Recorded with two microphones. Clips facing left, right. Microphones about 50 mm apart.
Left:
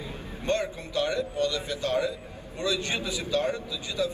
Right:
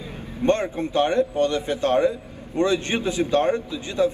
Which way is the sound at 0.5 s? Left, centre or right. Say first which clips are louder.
Right 7 dB; right.